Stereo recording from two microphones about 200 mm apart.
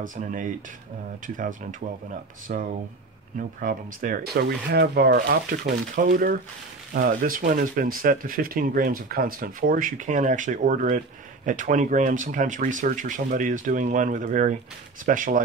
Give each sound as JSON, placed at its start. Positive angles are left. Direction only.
{"t": 0.0, "sound": "speech", "side_deg": -40}